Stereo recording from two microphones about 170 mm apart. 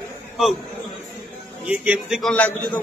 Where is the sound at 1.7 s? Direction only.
5° right (ahead or behind).